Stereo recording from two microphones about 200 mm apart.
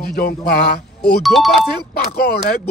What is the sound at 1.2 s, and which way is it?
Speech, centre (ahead or behind).